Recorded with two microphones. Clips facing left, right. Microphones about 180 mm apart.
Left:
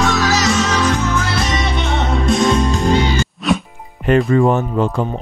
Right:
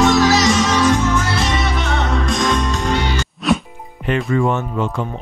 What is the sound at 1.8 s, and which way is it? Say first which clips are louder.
Music: left 2 dB; 30° left (ahead or behind).